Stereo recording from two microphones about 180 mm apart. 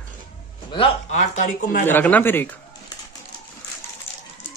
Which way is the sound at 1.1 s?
45° left (ahead or behind).